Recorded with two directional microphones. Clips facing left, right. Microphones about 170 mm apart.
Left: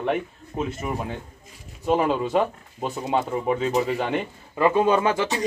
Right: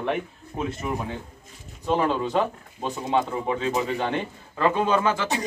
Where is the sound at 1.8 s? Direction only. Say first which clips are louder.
Left 2 dB; 5° left (ahead or behind).